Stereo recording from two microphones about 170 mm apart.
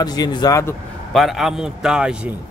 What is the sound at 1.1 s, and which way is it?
A man's voice, centre (ahead or behind).